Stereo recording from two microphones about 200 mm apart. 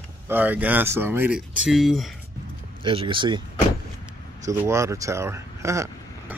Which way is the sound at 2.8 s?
25° right (ahead or behind).